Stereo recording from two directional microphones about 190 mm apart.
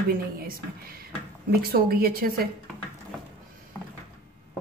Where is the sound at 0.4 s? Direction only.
50° right (ahead or behind).